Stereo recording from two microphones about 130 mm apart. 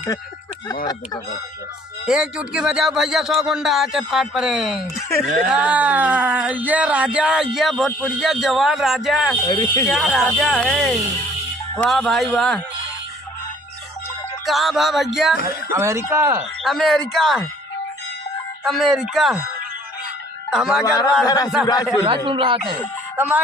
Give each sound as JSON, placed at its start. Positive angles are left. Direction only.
{"t": 2.0, "sound": "speech", "side_deg": -5}
{"t": 9.4, "sound": "speech", "side_deg": 25}
{"t": 9.8, "sound": "speech", "side_deg": 0}
{"t": 14.4, "sound": "speech", "side_deg": 0}
{"t": 15.4, "sound": "speech", "side_deg": -20}
{"t": 16.6, "sound": "speech", "side_deg": 0}
{"t": 18.6, "sound": "speech", "side_deg": 0}
{"t": 20.4, "sound": "speech", "side_deg": -5}
{"t": 20.8, "sound": "speech", "side_deg": 25}
{"t": 22.0, "sound": "a man's voice", "side_deg": -40}
{"t": 23.1, "sound": "speech", "side_deg": -15}